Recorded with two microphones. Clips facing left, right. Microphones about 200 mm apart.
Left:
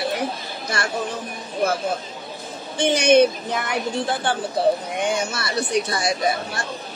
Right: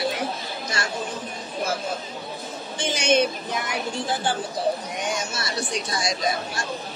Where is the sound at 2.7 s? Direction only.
60° left (ahead or behind).